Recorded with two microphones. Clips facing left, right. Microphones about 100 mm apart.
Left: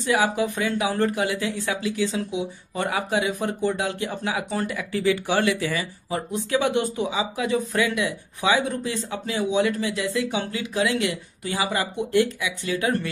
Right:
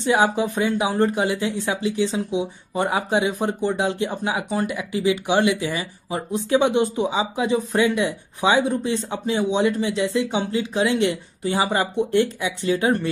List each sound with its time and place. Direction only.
0.0 s speech: 25° right (ahead or behind)